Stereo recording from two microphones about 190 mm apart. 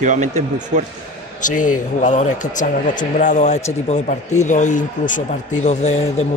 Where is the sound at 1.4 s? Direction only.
45° left (ahead or behind).